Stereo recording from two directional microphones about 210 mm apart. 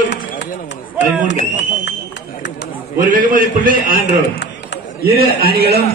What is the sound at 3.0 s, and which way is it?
A man's voice, 40° right (ahead or behind).